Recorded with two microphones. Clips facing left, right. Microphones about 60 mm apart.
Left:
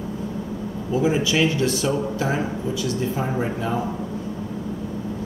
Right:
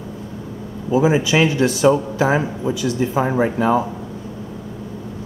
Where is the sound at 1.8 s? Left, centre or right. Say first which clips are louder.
Right 8 dB; right.